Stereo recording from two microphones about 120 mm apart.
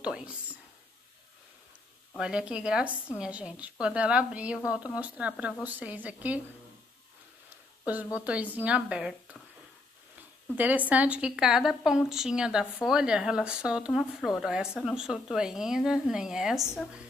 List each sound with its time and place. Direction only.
0.0 s a woman's voice: 10° right (ahead or behind)
2.1 s a woman's voice: 5° right (ahead or behind)
7.4 s speech: 15° right (ahead or behind)